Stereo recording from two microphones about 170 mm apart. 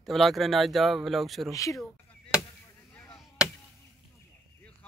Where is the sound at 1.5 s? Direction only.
20° left (ahead or behind).